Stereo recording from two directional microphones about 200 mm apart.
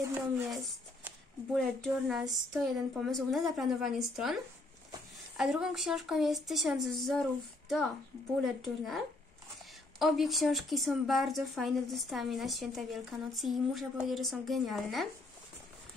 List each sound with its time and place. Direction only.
1.0 s speech: centre (ahead or behind)
5.4 s speech: centre (ahead or behind)